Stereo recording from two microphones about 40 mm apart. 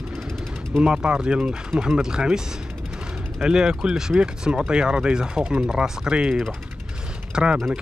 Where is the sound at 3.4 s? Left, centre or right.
Centre.